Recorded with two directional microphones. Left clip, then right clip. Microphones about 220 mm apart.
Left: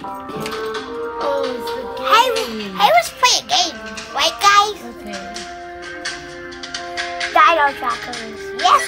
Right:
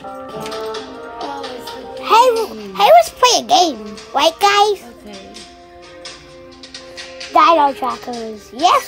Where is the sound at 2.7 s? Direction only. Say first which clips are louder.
Right 5 dB; 50° right (ahead or behind).